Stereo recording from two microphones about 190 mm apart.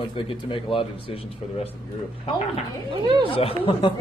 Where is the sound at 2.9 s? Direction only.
25° right (ahead or behind).